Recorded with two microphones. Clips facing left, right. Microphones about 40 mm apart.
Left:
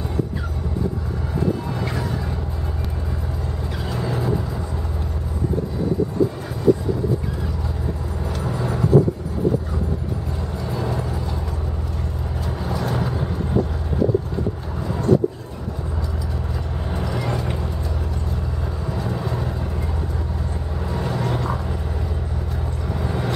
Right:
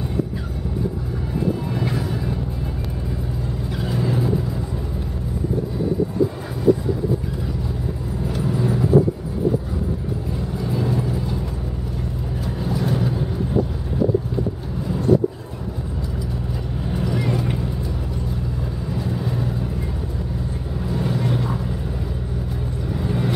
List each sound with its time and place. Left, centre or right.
1.6 s music: centre
3.8 s vehicle: centre
8.5 s vehicle: centre
10.6 s vehicle: centre
16.9 s vehicle: centre
21.2 s a sound: centre
23.0 s vehicle: centre